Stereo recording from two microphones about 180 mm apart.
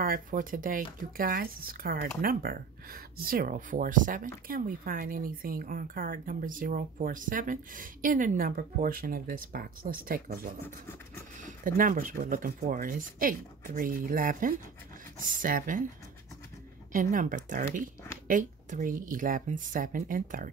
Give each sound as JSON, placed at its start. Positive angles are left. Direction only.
{"t": 0.0, "sound": "speech", "side_deg": -50}
{"t": 16.9, "sound": "speech", "side_deg": -50}